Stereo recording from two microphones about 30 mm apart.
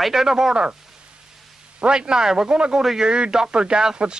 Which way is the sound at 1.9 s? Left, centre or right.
Right.